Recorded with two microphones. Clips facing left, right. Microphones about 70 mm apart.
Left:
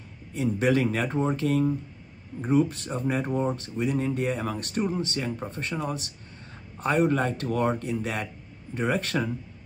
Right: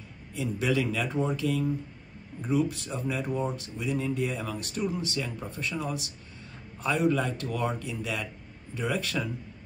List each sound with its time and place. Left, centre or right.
0.3 s speech: left